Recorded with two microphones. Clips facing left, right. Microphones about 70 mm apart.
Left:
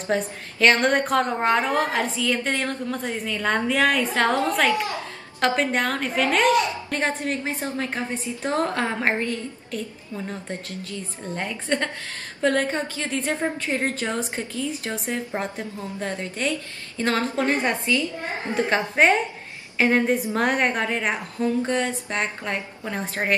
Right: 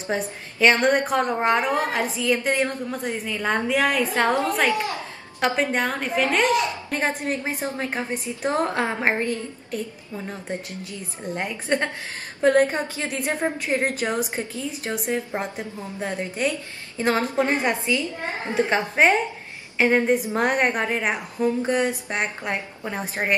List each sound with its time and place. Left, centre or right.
0.0 s a woman's voice: centre
5.4 s a woman's voice: centre
6.9 s a woman's voice: centre
10.8 s a woman's voice: centre
19.0 s a woman's voice: centre